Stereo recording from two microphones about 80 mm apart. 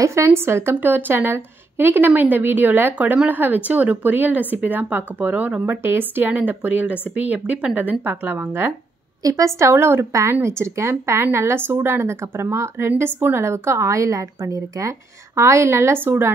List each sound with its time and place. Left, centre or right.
0.0 s a woman's voice: right; by 5.8 s centre
5.8 s a woman's voice: right
9.2 s speech: right